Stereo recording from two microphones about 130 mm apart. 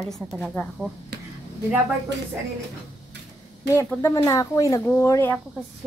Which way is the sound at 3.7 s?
25° left (ahead or behind).